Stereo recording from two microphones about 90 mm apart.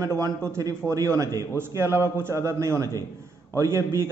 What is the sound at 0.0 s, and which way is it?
A man's voice, 35° right (ahead or behind).